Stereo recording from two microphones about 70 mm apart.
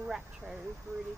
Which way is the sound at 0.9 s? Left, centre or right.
Right.